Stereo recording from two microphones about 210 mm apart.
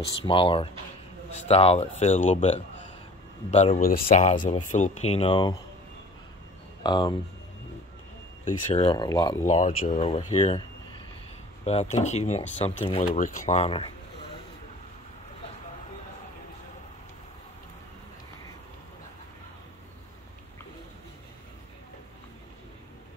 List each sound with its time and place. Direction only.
0.2 s speech: 25° left (ahead or behind)
6.8 s speech: 20° left (ahead or behind)
8.7 s speech: 20° left (ahead or behind)
9.5 s speech: 35° left (ahead or behind)
11.6 s speech: 30° left (ahead or behind)